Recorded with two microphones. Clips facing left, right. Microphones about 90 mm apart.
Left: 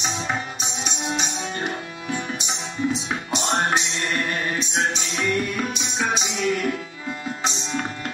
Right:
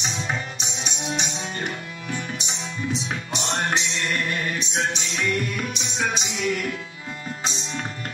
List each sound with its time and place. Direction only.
0.0 s music: 35° left (ahead or behind)